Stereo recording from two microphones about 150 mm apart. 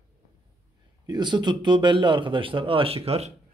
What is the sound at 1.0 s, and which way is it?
Speech, 30° right (ahead or behind).